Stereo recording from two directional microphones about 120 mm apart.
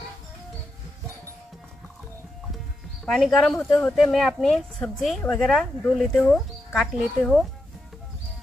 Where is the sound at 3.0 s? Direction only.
Centre (ahead or behind).